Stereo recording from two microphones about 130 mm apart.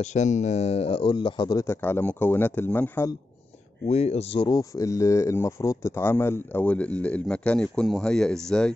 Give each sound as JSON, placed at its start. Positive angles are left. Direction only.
{"t": 0.0, "sound": "speech", "side_deg": 65}
{"t": 1.6, "sound": "speech", "side_deg": 20}
{"t": 3.9, "sound": "speech", "side_deg": 55}
{"t": 4.4, "sound": "speech", "side_deg": 30}